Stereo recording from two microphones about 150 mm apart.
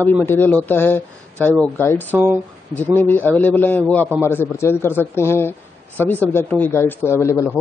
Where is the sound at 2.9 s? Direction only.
10° left (ahead or behind).